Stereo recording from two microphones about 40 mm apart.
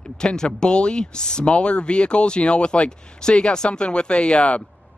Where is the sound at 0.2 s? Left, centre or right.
Centre.